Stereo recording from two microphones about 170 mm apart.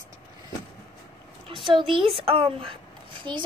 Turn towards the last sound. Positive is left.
turn(degrees=-30)  # may be behind; listen again after turning